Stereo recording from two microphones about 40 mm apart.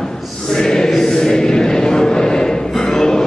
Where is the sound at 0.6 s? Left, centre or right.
Centre.